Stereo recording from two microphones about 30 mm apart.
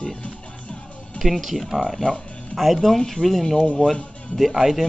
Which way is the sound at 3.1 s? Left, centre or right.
Centre.